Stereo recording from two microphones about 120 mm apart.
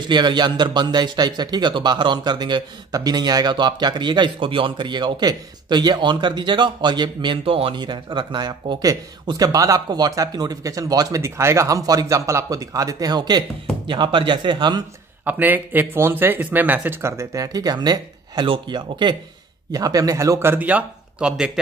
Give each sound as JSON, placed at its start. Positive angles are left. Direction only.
{"t": 0.0, "sound": "a man's voice", "side_deg": -40}
{"t": 7.8, "sound": "a man's voice", "side_deg": -40}
{"t": 15.2, "sound": "a man's voice", "side_deg": -15}
{"t": 19.7, "sound": "speech", "side_deg": -30}